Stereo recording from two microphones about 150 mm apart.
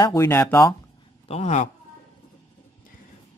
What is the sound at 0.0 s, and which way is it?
Speech, 20° left (ahead or behind).